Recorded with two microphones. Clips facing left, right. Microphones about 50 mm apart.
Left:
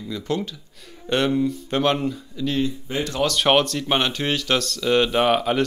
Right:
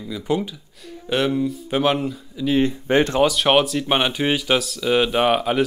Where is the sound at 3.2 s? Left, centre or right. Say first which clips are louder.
Right 2 dB; centre.